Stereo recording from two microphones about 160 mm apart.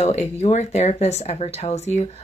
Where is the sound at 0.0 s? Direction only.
45° left (ahead or behind).